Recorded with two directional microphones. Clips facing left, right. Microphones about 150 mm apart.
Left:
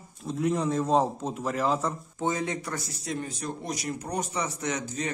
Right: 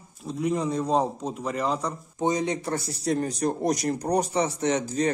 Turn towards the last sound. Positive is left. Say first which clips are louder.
# right 7 dB
turn(degrees=-35)  # may be behind; listen again after turning